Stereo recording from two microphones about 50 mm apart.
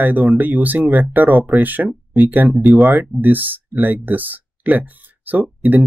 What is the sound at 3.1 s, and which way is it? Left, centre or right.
Speech, right.